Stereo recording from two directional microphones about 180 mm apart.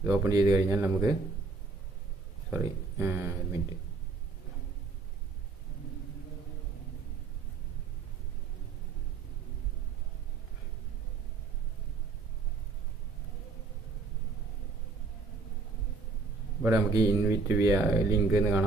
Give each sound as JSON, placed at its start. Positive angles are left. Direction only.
{"t": 0.0, "sound": "speech", "side_deg": -15}
{"t": 2.5, "sound": "speech", "side_deg": -10}
{"t": 16.6, "sound": "speech", "side_deg": -15}